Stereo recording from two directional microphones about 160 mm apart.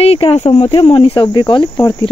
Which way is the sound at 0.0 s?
40° left (ahead or behind).